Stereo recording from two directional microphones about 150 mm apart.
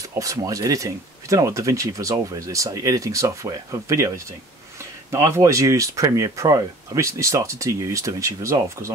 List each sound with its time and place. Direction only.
0.1 s speech: 20° right (ahead or behind)
5.1 s speech: 20° right (ahead or behind)